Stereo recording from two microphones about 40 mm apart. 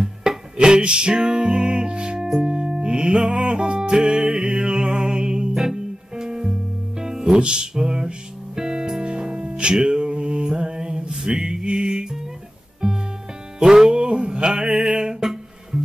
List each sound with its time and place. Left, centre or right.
0.0 s music: centre
9.9 s mantra: right
12.8 s music: centre